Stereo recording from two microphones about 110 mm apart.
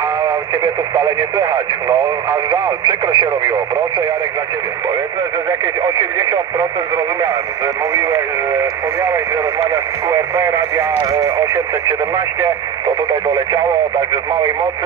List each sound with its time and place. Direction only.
0.9 s speech: 35° right (ahead or behind)
5.8 s speech: 35° right (ahead or behind)
12.8 s speech: 35° right (ahead or behind)